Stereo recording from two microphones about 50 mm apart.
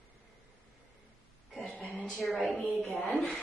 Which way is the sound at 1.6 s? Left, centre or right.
Centre.